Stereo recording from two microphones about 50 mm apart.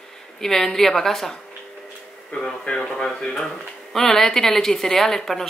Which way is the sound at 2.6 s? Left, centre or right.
Centre.